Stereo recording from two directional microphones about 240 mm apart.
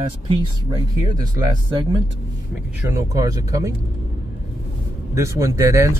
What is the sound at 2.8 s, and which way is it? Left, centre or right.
Speech, centre.